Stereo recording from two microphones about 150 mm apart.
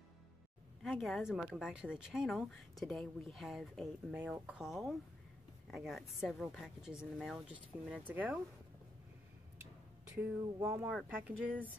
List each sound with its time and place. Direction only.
0.8 s speech: centre (ahead or behind)
10.1 s speech: 15° right (ahead or behind)